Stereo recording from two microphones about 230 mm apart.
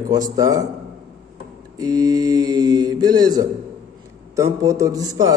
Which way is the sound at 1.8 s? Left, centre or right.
Centre.